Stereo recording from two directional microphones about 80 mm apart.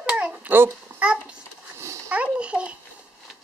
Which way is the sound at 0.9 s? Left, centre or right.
Right.